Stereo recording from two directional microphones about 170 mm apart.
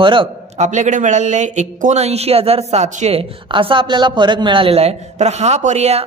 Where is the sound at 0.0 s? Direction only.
30° right (ahead or behind).